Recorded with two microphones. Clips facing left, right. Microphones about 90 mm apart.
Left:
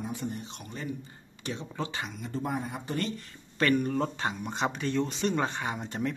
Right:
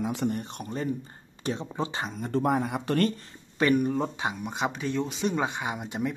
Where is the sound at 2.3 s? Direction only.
65° right (ahead or behind).